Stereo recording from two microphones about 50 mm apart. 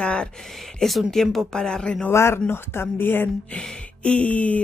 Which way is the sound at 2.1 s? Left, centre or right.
Left.